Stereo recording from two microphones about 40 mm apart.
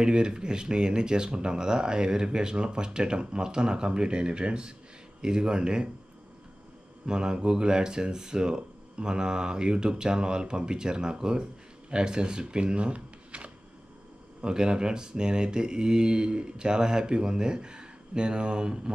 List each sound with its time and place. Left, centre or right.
0.0 s speech: right
7.1 s speech: centre
14.4 s speech: right